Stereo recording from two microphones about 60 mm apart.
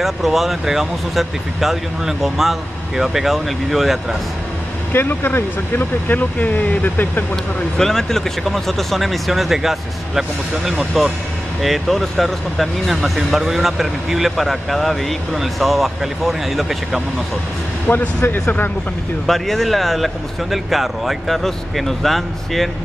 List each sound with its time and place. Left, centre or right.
0.0 s speech: centre
4.9 s speech: left
7.7 s speech: centre
17.8 s speech: left
19.2 s speech: centre